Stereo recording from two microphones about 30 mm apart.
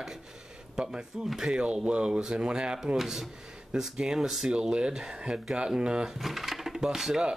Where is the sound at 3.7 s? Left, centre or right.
Right.